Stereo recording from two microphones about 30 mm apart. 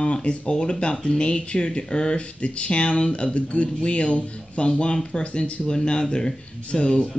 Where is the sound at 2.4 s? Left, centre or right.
Left.